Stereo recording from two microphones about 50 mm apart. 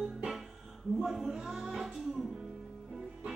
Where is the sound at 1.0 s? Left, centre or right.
Centre.